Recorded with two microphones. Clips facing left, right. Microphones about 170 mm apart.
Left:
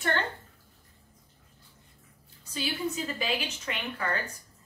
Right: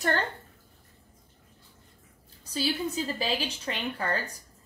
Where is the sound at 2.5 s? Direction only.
35° right (ahead or behind).